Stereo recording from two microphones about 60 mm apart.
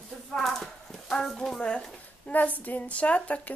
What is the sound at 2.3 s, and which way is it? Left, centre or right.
A woman's voice, left.